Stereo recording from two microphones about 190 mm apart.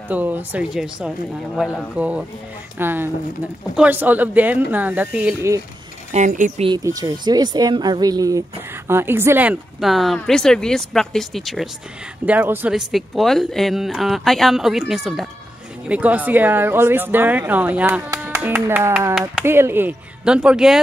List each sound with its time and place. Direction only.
0.1 s speech: 10° right (ahead or behind)
6.1 s speech: 40° right (ahead or behind)
6.7 s speech: 20° right (ahead or behind); by 20.8 s 5° right (ahead or behind)